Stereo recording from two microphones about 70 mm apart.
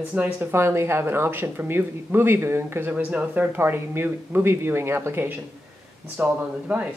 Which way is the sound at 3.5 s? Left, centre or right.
Right.